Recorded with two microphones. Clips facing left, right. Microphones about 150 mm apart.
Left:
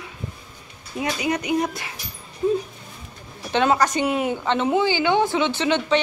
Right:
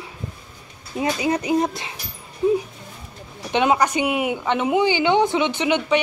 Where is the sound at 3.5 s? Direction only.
15° right (ahead or behind).